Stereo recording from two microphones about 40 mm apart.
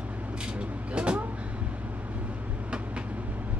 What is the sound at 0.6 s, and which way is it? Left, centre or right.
Vehicle, right.